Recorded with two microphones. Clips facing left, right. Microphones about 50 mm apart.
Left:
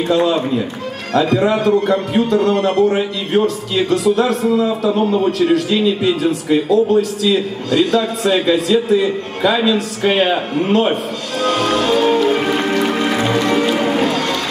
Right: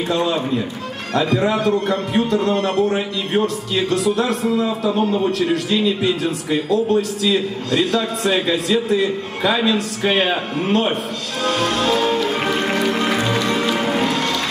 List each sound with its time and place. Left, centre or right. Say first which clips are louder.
1.1 s a man's voice: left 4 dB; centre
11.8 s music: left 5 dB; centre
13.4 s music: left 4 dB; left
13.8 s music: left 3 dB; centre